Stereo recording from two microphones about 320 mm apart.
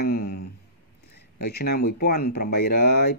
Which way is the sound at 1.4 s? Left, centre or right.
Left.